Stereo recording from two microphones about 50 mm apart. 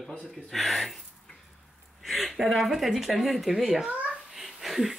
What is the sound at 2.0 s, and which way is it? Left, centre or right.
Speech, centre.